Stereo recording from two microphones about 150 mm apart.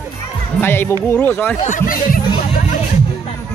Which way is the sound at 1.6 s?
55° left (ahead or behind).